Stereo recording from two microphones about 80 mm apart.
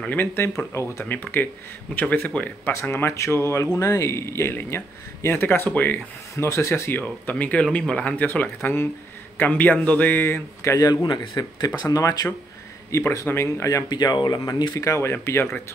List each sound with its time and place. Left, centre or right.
0.0 s speech: left
1.0 s speech: left
2.7 s speech: left
3.6 s speech: left
6.3 s speech: left
10.9 s speech: left
13.3 s speech: left
13.8 s speech: left
14.7 s speech: left